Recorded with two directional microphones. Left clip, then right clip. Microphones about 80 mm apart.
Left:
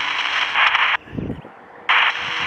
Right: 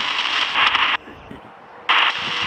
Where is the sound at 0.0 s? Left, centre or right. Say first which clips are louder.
Even; centre.